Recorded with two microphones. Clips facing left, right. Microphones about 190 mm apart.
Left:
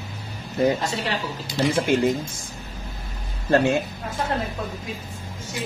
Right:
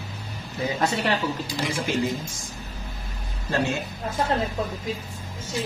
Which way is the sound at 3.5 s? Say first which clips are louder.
Left 7 dB; 55° left (ahead or behind).